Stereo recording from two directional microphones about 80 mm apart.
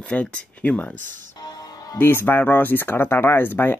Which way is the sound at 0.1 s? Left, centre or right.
Centre.